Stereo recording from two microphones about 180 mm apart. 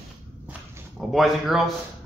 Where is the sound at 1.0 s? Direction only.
Centre (ahead or behind).